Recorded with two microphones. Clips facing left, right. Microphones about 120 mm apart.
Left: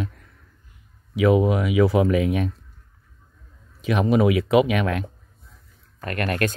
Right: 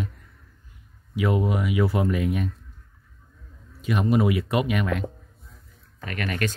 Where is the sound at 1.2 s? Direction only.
90° left.